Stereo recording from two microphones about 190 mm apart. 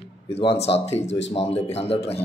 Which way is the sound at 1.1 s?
70° left (ahead or behind).